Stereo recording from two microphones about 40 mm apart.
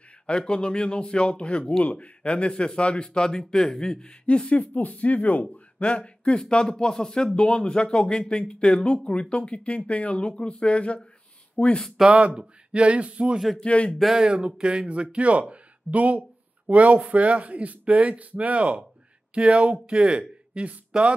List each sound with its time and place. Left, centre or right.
0.3 s speech: left
4.7 s speech: left
5.8 s speech: left
6.7 s speech: centre
12.1 s speech: right
13.6 s speech: left
14.1 s speech: right
14.9 s speech: right